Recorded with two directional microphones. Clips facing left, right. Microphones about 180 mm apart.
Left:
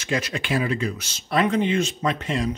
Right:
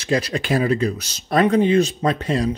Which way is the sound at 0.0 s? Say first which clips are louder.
Right 5 dB; 35° right (ahead or behind).